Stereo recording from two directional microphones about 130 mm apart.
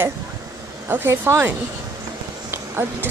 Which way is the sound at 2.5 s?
20° right (ahead or behind).